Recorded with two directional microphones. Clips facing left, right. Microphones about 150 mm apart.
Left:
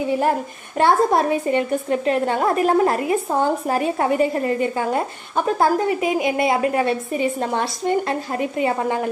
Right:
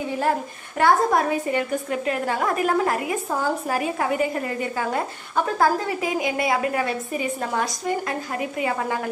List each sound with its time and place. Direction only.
0.7 s a woman's voice: 25° left (ahead or behind)